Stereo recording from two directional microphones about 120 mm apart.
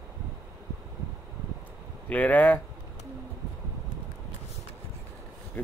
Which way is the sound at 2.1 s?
15° left (ahead or behind).